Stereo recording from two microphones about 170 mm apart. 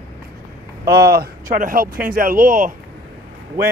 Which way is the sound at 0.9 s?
65° right (ahead or behind).